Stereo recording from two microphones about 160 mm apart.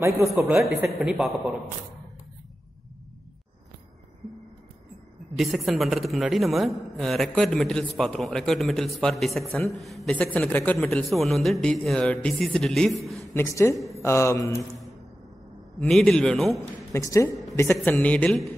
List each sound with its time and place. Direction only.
0.8 s a man's voice: centre (ahead or behind)
5.3 s a man's voice: centre (ahead or behind)
13.3 s a man's voice: 15° left (ahead or behind)
15.8 s a man's voice: centre (ahead or behind)
16.5 s a man's voice: 20° left (ahead or behind)